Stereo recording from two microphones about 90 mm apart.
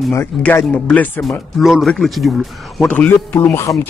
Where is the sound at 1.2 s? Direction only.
Centre (ahead or behind).